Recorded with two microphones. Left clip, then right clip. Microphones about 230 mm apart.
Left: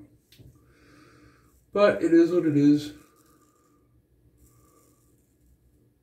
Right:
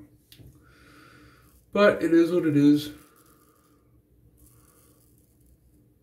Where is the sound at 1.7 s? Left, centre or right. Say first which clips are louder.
Even; centre.